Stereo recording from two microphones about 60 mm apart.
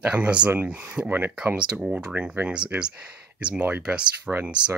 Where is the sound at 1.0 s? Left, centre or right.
Right.